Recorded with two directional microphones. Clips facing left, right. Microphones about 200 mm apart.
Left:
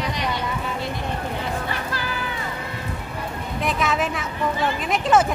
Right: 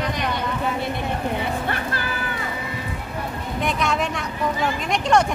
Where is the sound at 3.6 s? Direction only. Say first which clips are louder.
Even; centre (ahead or behind).